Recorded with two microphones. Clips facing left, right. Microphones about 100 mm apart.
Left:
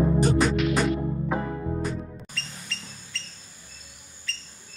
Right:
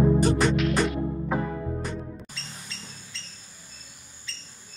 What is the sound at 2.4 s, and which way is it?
Music, 20° right (ahead or behind).